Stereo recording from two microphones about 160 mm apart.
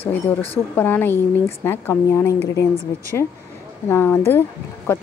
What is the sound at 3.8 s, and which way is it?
Speech, 15° left (ahead or behind).